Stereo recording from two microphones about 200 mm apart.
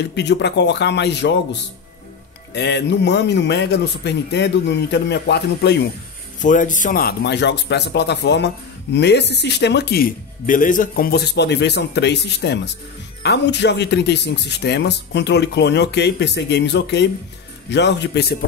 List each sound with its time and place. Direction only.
0.0 s speech: 60° left (ahead or behind)
6.4 s speech: 40° left (ahead or behind)